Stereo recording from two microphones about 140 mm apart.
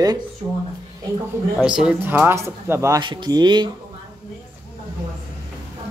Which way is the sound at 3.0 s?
35° right (ahead or behind).